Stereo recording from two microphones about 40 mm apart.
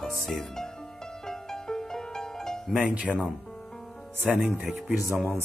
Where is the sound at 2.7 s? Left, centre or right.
Right.